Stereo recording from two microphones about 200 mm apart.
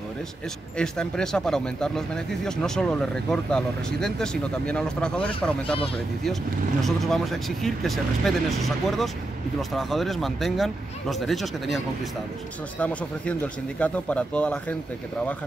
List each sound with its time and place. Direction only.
0.7 s speech: 5° left (ahead or behind)
6.8 s speech: centre (ahead or behind)